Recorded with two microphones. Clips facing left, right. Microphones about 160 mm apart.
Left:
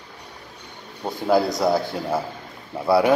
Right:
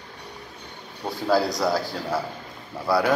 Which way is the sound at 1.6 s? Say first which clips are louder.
Left 3 dB; 20° left (ahead or behind).